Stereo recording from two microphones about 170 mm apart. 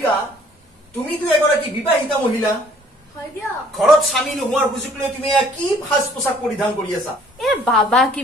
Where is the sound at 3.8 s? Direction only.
Centre (ahead or behind).